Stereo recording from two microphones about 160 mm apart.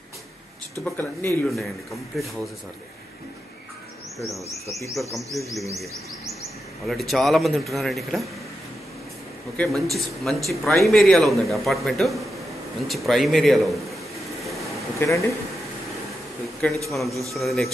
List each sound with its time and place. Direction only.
0.8 s speech: 15° left (ahead or behind)
2.1 s a man's voice: centre (ahead or behind)
4.2 s a man's voice: centre (ahead or behind)
6.9 s a man's voice: centre (ahead or behind)
9.6 s a man's voice: centre (ahead or behind)
14.4 s a sound: centre (ahead or behind)
15.0 s speech: 20° left (ahead or behind)
16.9 s a man's voice: centre (ahead or behind)